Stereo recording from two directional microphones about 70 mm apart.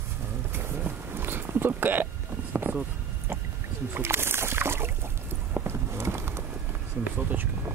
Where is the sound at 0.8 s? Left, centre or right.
Right.